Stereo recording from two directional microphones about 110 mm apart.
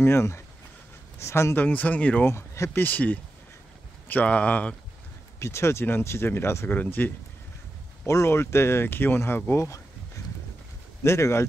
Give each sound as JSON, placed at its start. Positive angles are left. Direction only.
{"t": 0.0, "sound": "speech", "side_deg": 25}
{"t": 2.3, "sound": "speech", "side_deg": 25}
{"t": 5.4, "sound": "speech", "side_deg": 25}
{"t": 11.1, "sound": "speech", "side_deg": 25}